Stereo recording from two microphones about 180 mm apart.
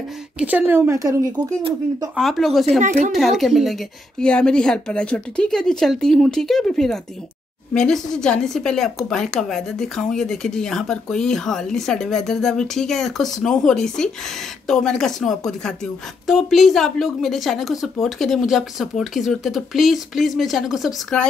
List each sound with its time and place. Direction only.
0.4 s speech: 10° right (ahead or behind)
2.1 s a woman's voice: centre (ahead or behind)
2.8 s speech: 45° right (ahead or behind)
3.1 s a woman's voice: centre (ahead or behind)